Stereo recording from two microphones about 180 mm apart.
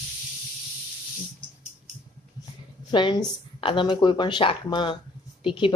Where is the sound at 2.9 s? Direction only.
25° left (ahead or behind).